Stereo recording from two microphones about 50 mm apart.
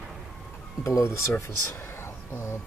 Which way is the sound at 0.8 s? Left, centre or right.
Left.